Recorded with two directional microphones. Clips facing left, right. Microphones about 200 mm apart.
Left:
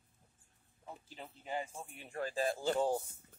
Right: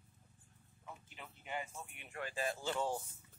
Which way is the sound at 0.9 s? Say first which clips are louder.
Left 4 dB; 35° left (ahead or behind).